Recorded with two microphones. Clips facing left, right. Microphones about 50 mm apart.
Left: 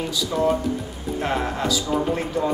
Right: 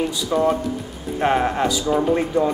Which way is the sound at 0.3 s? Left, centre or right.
Centre.